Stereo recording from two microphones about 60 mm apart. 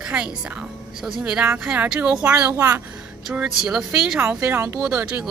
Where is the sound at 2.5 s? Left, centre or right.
Right.